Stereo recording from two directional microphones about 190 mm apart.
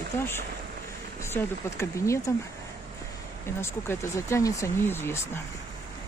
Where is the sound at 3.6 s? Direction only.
15° left (ahead or behind).